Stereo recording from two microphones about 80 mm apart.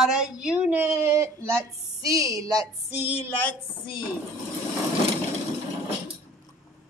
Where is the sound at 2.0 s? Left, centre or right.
Right.